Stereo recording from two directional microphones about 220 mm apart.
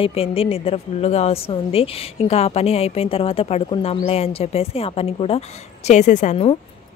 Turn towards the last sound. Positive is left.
turn(degrees=30)  # may be behind; listen again after turning